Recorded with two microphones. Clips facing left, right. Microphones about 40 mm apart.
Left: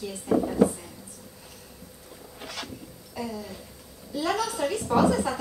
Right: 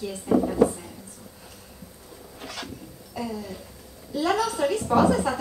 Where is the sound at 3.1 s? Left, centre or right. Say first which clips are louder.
Right 2 dB; centre.